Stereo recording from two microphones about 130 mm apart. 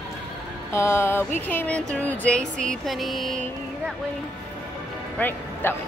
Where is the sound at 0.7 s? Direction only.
20° left (ahead or behind).